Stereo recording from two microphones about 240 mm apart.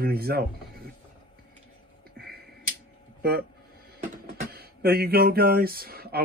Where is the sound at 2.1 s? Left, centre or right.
Right.